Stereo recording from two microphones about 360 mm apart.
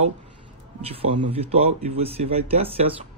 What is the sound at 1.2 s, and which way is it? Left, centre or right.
Speech, centre.